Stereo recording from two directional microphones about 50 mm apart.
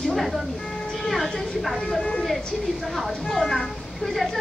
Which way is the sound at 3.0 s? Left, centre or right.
Centre.